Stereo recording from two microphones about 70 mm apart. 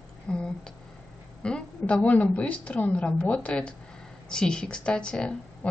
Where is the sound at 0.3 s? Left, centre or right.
Centre.